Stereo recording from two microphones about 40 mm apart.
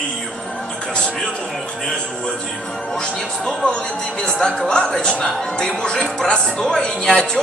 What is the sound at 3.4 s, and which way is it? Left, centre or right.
Speech, left.